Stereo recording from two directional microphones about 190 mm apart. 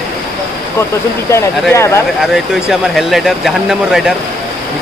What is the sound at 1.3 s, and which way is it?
Speech, 15° left (ahead or behind).